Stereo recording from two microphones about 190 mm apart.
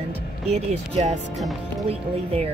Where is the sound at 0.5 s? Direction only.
35° right (ahead or behind).